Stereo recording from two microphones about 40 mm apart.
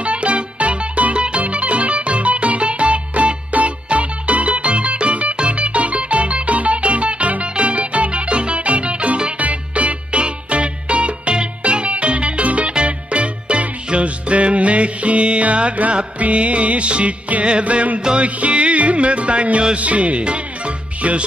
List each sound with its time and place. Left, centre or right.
0.0 s music: right